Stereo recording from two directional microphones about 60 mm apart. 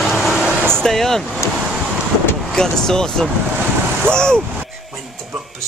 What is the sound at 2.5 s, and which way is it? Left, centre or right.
Speech, centre.